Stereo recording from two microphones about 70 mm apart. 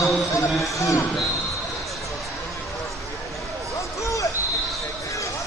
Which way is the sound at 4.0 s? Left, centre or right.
Left.